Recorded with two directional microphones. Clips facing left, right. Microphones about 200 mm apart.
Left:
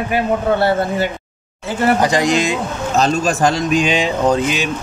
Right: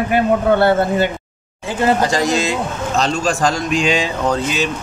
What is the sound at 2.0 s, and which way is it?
Speech, 15° left (ahead or behind).